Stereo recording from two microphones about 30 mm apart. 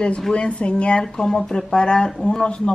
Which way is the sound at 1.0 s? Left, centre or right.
Left.